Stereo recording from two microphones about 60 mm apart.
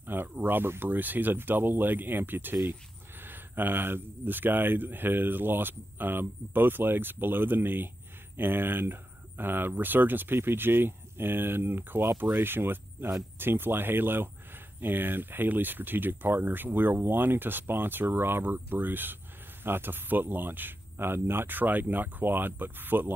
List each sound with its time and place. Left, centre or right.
0.0 s speech: right